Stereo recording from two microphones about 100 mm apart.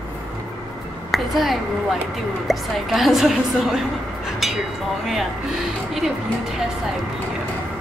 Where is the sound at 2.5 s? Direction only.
Centre (ahead or behind).